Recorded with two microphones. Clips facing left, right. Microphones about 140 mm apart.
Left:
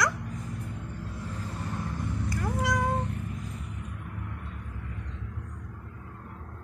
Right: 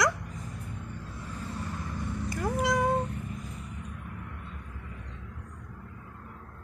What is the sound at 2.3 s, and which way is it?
Cat, 20° right (ahead or behind).